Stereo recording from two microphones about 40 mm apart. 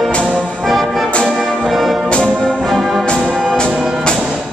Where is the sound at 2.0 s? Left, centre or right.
Left.